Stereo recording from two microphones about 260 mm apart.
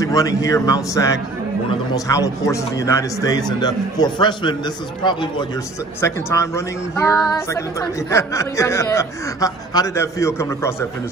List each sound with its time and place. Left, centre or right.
0.0 s a woman's voice: centre
5.9 s a woman's voice: centre